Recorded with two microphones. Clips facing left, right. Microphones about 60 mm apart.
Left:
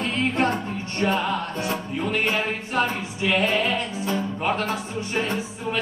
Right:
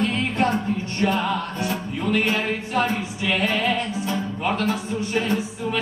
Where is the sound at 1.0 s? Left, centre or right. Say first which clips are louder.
Right 1 dB; left.